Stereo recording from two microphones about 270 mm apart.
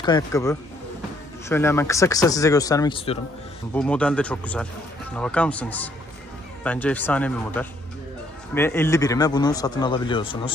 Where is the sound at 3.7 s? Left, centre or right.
Centre.